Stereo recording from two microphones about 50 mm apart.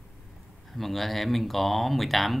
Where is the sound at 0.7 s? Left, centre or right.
Centre.